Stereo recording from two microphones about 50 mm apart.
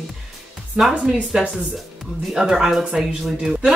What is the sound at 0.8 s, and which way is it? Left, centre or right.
Speech, right.